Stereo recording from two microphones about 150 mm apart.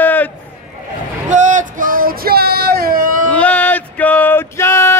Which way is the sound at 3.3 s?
10° left (ahead or behind).